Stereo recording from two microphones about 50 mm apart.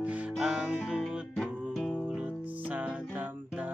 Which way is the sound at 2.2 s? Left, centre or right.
Right.